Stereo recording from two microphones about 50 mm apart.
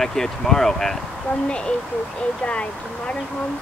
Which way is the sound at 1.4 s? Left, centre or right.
Centre.